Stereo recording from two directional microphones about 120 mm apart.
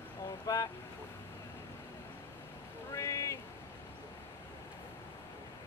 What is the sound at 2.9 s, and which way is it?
Speech, 25° left (ahead or behind).